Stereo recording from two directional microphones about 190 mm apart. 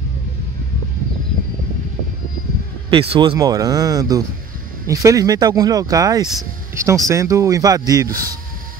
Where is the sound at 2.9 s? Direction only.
30° right (ahead or behind).